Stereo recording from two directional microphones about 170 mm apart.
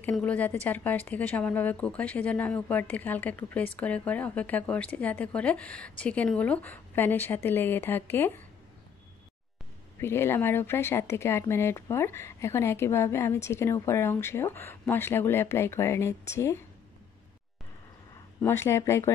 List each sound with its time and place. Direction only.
0.0 s speech: 10° left (ahead or behind)
9.9 s speech: 15° left (ahead or behind)
18.4 s speech: 15° left (ahead or behind)